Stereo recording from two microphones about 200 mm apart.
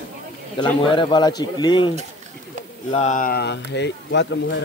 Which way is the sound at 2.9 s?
35° left (ahead or behind).